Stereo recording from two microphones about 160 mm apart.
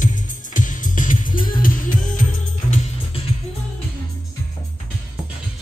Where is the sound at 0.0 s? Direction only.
55° left (ahead or behind).